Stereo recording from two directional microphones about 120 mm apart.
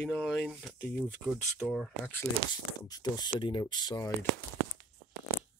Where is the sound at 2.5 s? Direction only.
35° left (ahead or behind).